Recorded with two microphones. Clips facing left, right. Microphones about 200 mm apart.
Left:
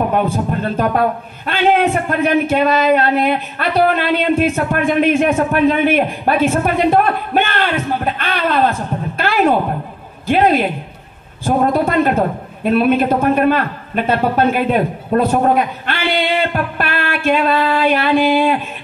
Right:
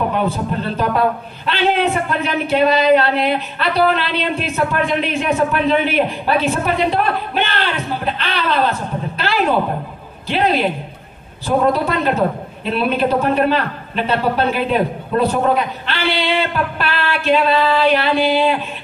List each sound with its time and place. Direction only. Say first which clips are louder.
0.1 s a man's voice: left 2 dB; 50° left (ahead or behind)
9.2 s a sound: left 4 dB; 50° left (ahead or behind)
10.2 s a man's voice: left 3 dB; 50° left (ahead or behind)